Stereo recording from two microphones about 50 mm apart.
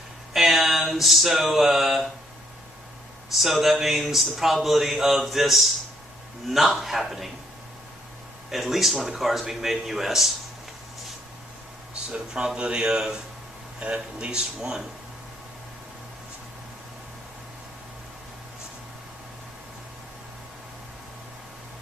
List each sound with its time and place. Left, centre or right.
0.3 s a sound: centre
3.3 s speech: centre
8.5 s speech: centre
11.9 s speech: right
13.8 s speech: right